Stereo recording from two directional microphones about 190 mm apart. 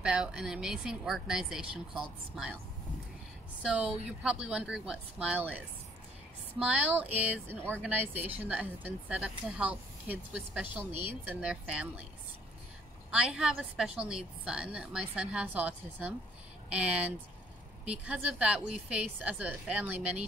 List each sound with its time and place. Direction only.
0.0 s a woman's voice: 5° right (ahead or behind)
3.6 s a woman's voice: 5° right (ahead or behind)
6.6 s speech: 5° right (ahead or behind)
8.1 s speech: 35° right (ahead or behind)
8.4 s speech: 10° right (ahead or behind)
13.1 s a woman's voice: 5° right (ahead or behind)